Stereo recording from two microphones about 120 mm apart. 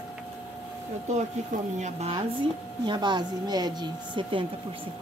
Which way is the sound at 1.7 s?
75° right (ahead or behind).